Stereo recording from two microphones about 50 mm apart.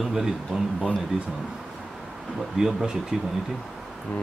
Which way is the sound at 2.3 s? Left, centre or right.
Centre.